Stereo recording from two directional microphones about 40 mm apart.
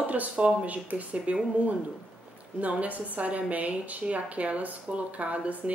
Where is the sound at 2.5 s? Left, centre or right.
Right.